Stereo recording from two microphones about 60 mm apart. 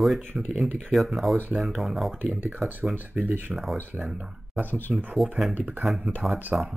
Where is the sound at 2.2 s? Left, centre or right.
Right.